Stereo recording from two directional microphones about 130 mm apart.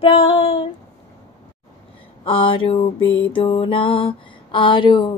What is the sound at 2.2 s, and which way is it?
Music, 40° left (ahead or behind).